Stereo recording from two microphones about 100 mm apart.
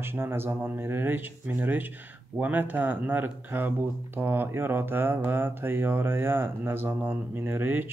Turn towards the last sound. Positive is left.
turn(degrees=-20)  # may be behind; listen again after turning